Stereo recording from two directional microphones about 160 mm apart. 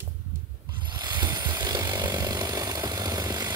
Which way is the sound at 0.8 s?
30° right (ahead or behind).